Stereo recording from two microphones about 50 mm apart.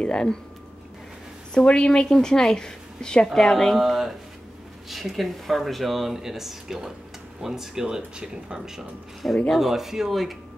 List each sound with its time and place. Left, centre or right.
0.0 s speech: centre
1.5 s a woman's voice: centre
3.7 s speech: centre